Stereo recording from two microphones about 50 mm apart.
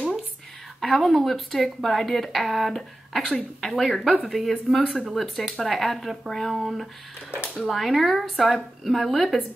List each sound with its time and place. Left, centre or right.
0.7 s speech: centre
7.2 s speech: left
7.6 s speech: centre